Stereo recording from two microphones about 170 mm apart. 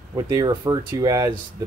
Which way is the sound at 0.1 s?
25° right (ahead or behind).